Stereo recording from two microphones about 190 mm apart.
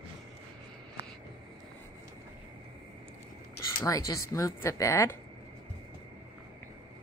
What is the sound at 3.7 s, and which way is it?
Speech, 15° left (ahead or behind).